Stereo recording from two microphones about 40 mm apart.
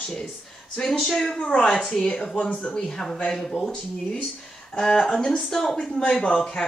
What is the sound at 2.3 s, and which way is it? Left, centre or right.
Speech, left.